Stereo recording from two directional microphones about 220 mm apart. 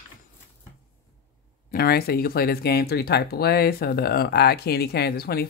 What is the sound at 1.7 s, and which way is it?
Speech, 45° left (ahead or behind).